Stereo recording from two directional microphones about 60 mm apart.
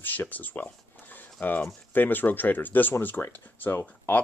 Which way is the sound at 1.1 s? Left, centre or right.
Left.